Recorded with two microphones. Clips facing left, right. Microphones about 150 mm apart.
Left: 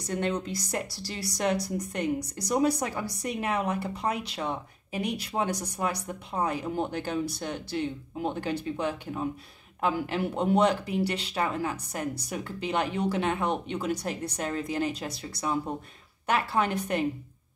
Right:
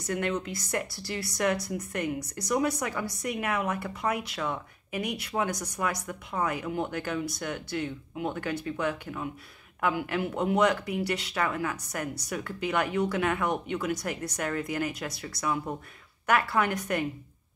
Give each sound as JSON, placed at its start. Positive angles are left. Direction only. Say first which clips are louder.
{"t": 0.0, "sound": "a woman's voice", "louder": "even", "side_deg": 30}